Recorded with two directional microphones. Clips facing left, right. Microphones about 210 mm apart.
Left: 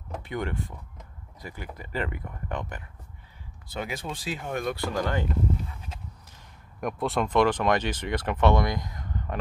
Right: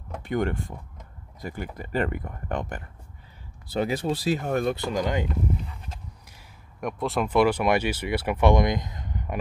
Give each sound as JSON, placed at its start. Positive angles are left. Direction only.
{"t": 0.2, "sound": "speech", "side_deg": -50}
{"t": 3.7, "sound": "speech", "side_deg": -35}
{"t": 4.7, "sound": "speech", "side_deg": -15}
{"t": 6.8, "sound": "speech", "side_deg": 0}